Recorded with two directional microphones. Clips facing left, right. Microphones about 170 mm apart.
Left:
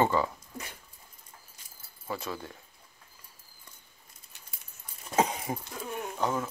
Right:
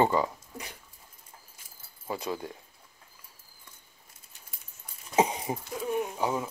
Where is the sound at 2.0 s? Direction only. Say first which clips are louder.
Right 3 dB; 20° right (ahead or behind).